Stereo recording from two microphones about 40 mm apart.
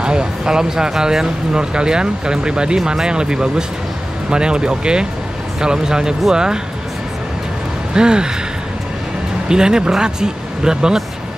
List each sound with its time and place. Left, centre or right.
0.0 s speech: right
7.9 s speech: centre
9.5 s speech: centre